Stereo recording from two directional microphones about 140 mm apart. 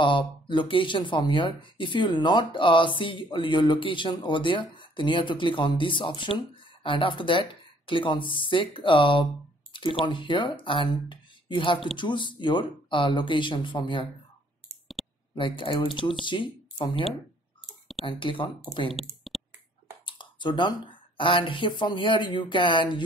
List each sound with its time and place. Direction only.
0.0 s speech: 35° left (ahead or behind)
15.0 s a sound: centre (ahead or behind)
15.3 s speech: 35° left (ahead or behind)
18.0 s speech: 35° left (ahead or behind)
19.3 s finger snapping: centre (ahead or behind)
20.1 s speech: 35° left (ahead or behind)